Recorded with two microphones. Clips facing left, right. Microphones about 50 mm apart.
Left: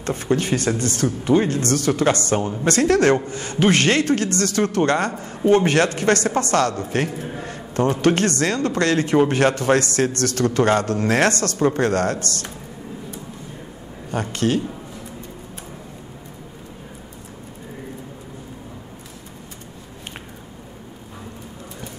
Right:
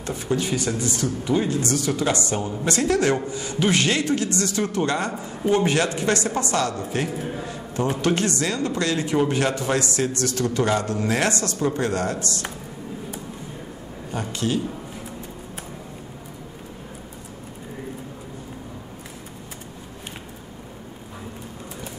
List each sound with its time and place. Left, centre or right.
0.0 s a man's voice: left
0.7 s a man's voice: left
1.2 s a man's voice: left
5.4 s a man's voice: left
5.9 s a man's voice: left
7.1 s a man's voice: centre
7.4 s a sound: left
8.0 s a man's voice: left
14.3 s a man's voice: left